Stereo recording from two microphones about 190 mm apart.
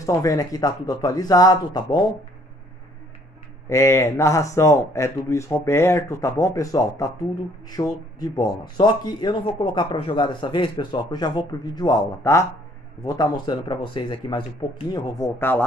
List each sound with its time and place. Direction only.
0.0 s speech: 15° left (ahead or behind)
3.6 s speech: 15° left (ahead or behind)